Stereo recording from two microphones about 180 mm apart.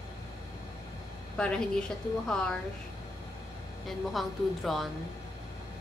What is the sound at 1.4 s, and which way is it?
Speech, 5° left (ahead or behind).